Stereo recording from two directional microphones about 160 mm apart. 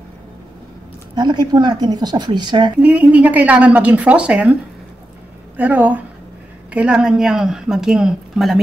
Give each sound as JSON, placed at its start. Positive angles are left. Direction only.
{"t": 1.1, "sound": "speech", "side_deg": -25}
{"t": 2.8, "sound": "a woman's voice", "side_deg": -10}
{"t": 5.6, "sound": "a woman's voice", "side_deg": -10}